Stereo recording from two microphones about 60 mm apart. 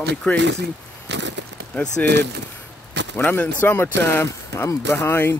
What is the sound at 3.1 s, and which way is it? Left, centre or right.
Speech, left.